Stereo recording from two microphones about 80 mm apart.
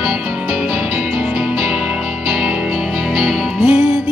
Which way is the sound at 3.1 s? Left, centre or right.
Centre.